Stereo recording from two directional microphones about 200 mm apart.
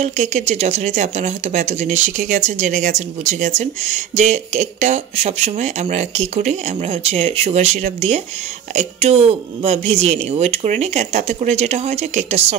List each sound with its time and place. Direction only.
0.0 s speech: 35° right (ahead or behind)